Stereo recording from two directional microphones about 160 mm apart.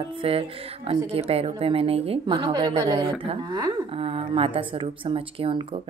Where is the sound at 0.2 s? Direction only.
35° right (ahead or behind).